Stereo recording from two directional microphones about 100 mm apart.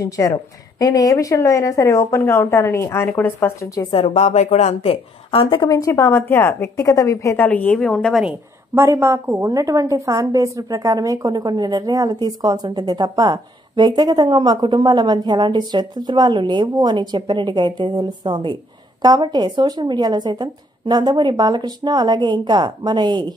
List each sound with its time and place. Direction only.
0.0 s a woman's voice: 35° left (ahead or behind); by 3.5 s 20° left (ahead or behind)
3.9 s a woman's voice: 90° left; by 5.6 s 70° left (ahead or behind)
5.6 s a woman's voice: 35° left (ahead or behind)
7.3 s a woman's voice: 15° left (ahead or behind)
8.7 s a woman's voice: 30° right (ahead or behind); by 23.3 s 45° right (ahead or behind)